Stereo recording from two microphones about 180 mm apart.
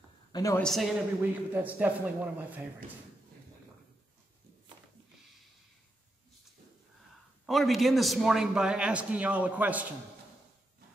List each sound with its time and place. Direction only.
0.3 s a woman's voice: 20° left (ahead or behind)
0.6 s a man's voice: centre (ahead or behind)
7.4 s a man's voice: centre (ahead or behind)